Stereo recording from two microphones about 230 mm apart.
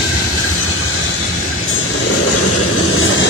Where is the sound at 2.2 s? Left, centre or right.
Left.